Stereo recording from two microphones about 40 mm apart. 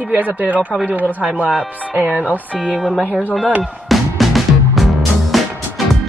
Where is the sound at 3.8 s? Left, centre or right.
Centre.